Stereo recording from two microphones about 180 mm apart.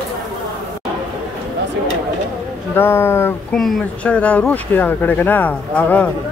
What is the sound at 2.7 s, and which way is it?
Speech, 10° left (ahead or behind).